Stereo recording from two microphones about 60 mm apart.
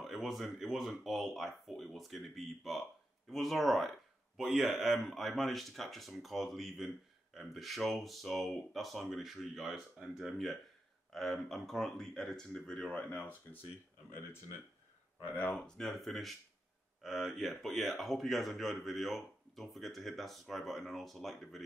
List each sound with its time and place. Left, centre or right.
0.0 s speech: centre
13.2 s speech: left
15.6 s speech: centre